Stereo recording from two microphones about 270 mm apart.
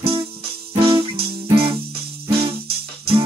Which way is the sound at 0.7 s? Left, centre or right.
Centre.